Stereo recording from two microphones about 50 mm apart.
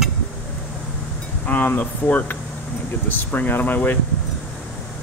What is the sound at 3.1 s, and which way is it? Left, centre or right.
Speech, left.